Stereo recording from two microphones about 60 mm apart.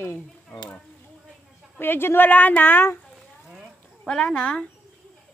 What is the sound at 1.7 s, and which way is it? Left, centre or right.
Speech, left.